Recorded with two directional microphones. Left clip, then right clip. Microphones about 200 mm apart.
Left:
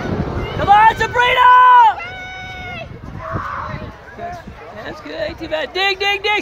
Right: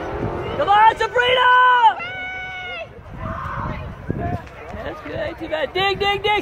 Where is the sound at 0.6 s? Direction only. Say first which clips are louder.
Left 3 dB; 45° left (ahead or behind).